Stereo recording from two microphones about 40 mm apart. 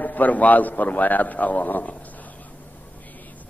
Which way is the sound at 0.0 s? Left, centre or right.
Left.